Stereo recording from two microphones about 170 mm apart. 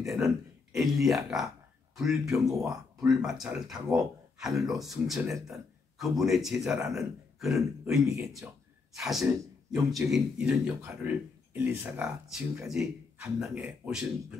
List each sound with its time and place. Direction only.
0.0 s a man's voice: centre (ahead or behind)
2.4 s speech: 20° right (ahead or behind)
3.1 s a man's voice: centre (ahead or behind)